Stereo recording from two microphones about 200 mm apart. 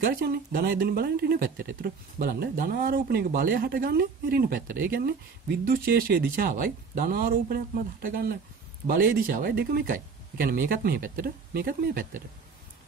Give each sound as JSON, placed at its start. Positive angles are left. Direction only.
{"t": 0.0, "sound": "speech", "side_deg": -50}